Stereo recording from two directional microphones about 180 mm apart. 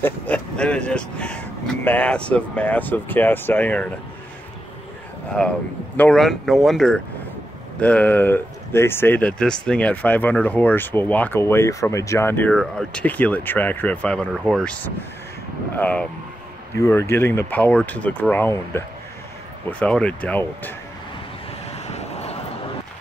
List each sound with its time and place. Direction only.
0.0 s speech: 5° left (ahead or behind)
5.4 s speech: 5° left (ahead or behind)
21.6 s vehicle: 35° left (ahead or behind)